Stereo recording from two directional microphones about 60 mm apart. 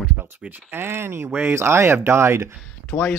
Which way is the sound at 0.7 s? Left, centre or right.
Right.